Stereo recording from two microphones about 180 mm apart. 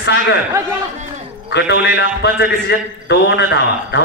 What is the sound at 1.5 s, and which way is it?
A man's voice, 65° left (ahead or behind).